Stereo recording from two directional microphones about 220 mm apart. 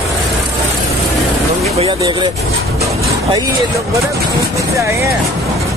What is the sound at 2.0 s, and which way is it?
Speech, 20° right (ahead or behind).